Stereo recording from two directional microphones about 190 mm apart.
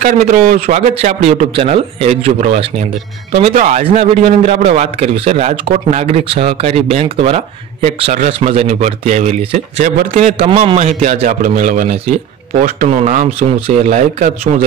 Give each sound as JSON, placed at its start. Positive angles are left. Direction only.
{"t": 0.0, "sound": "a man's voice", "side_deg": -40}